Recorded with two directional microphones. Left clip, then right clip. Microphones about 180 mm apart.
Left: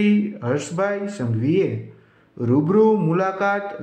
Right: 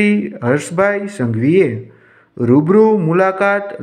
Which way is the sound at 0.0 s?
25° right (ahead or behind).